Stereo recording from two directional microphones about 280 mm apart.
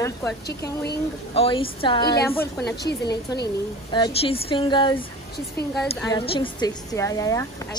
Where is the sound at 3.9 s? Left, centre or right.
Centre.